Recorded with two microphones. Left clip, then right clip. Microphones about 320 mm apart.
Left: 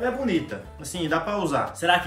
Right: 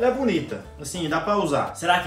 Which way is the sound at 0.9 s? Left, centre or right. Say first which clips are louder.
Right 2 dB; centre.